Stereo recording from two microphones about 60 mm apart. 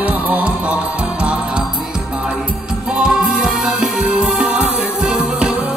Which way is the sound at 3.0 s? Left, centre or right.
Centre.